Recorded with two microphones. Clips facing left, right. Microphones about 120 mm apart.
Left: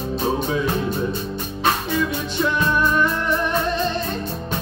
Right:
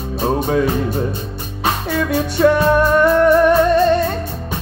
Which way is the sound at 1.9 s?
65° right (ahead or behind).